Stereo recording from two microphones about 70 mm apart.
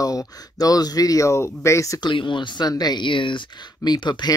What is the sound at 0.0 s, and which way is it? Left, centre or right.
Speech, left.